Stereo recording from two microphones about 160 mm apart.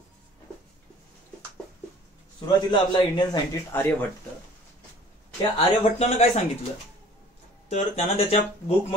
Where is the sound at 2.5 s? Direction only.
30° left (ahead or behind).